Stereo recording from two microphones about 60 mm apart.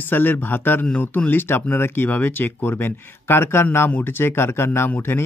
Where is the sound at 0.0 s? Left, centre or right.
Left.